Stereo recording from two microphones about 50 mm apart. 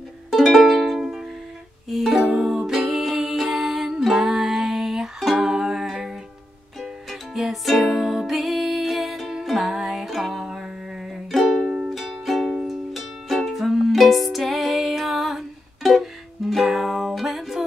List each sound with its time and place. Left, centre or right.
0.3 s music: centre
0.8 s music: centre